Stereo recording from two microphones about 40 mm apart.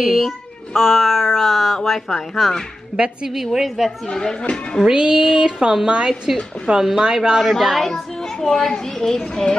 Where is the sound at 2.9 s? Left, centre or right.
Right.